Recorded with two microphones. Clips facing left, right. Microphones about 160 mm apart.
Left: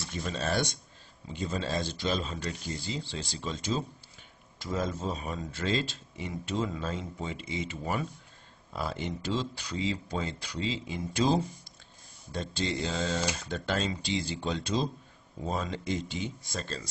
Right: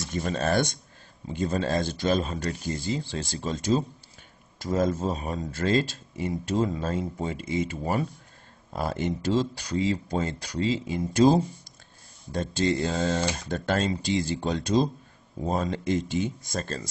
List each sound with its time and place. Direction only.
0.0 s speech: 50° right (ahead or behind)